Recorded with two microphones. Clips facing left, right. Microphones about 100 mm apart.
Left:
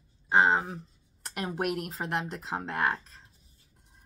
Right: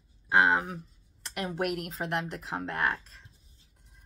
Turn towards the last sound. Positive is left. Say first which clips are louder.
# left 1 dB
turn(degrees=35)  # may be behind; listen again after turning